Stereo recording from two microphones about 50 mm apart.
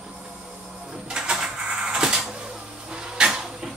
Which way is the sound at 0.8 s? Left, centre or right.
Centre.